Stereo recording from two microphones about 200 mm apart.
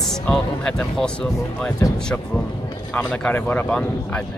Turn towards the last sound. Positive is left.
turn(degrees=5)  # may be behind; listen again after turning